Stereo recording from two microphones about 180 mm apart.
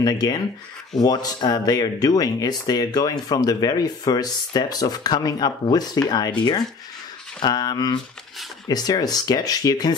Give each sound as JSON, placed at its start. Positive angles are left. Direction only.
{"t": 0.0, "sound": "speech", "side_deg": 20}